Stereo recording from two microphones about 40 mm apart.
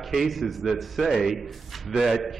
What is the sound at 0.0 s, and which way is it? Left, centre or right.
A man's voice, centre.